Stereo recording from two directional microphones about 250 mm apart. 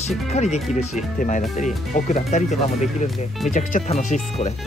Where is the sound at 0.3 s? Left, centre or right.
Left.